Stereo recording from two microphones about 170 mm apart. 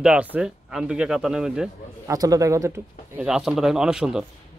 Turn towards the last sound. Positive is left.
turn(degrees=-5)  # may be behind; listen again after turning